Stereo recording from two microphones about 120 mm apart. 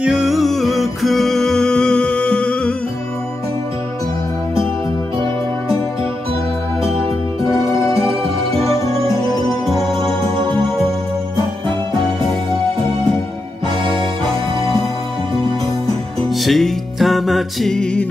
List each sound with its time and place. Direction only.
0.0 s music: 5° right (ahead or behind)
7.4 s music: 25° left (ahead or behind)
9.7 s music: centre (ahead or behind)
13.8 s music: 40° right (ahead or behind)
16.3 s music: centre (ahead or behind)